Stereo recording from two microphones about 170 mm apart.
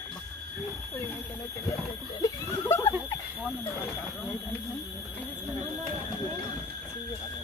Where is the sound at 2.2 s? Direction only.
15° left (ahead or behind).